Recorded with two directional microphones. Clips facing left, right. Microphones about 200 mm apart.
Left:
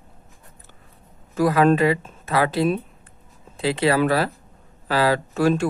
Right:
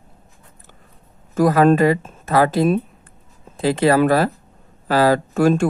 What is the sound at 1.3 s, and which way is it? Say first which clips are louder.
A man's voice: right 3 dB; 45° right (ahead or behind).